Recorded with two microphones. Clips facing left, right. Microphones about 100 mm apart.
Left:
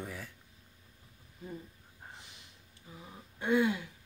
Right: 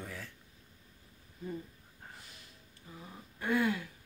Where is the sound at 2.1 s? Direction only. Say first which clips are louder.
Left 1 dB; 20° left (ahead or behind).